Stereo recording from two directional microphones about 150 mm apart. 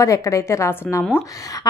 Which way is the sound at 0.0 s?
20° left (ahead or behind).